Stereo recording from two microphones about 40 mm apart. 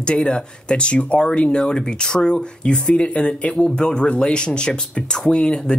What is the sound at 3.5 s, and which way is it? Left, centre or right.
Speech, centre.